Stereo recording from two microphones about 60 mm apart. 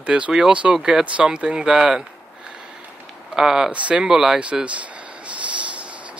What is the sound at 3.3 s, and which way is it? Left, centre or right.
Speech, centre.